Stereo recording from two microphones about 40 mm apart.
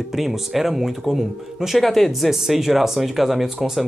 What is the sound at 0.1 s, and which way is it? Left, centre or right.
Speech, centre.